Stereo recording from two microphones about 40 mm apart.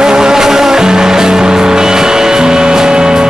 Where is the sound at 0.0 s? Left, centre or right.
Centre.